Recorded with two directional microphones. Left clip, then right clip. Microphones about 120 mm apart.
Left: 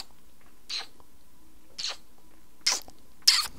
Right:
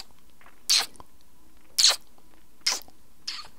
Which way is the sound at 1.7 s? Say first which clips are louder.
Right 14 dB; 35° right (ahead or behind).